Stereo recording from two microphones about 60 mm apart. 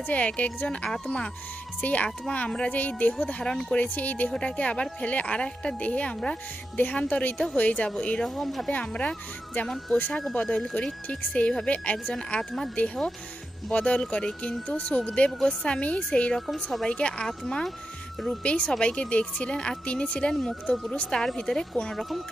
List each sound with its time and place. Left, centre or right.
0.0 s speech: left
0.8 s a woman's voice: centre; by 4.3 s left
4.3 s speech: centre
8.4 s speech: centre
8.6 s a woman's voice: centre
13.7 s a woman's voice: centre